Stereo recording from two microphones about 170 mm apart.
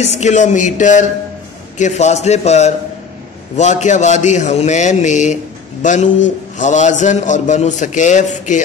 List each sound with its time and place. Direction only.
0.0 s a man's voice: 40° left (ahead or behind)